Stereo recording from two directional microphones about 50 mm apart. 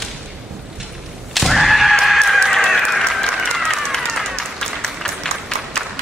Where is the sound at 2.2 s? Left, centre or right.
Centre.